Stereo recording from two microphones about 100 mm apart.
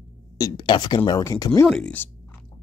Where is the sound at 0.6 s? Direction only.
50° left (ahead or behind).